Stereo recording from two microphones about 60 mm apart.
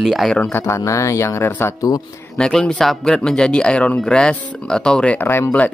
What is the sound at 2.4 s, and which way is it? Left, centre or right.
Speech, centre.